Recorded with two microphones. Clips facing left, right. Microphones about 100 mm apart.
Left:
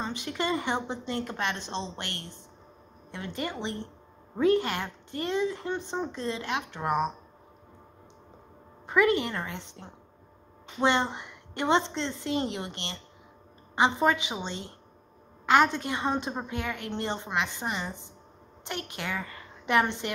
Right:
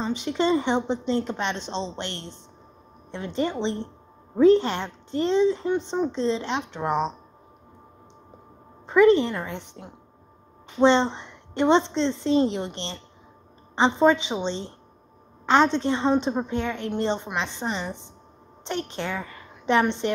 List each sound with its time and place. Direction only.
0.0 s a woman's voice: 20° right (ahead or behind)
8.9 s a woman's voice: 25° right (ahead or behind)